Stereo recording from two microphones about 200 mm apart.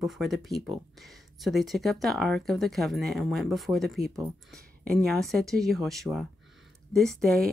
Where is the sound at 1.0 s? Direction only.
Centre (ahead or behind).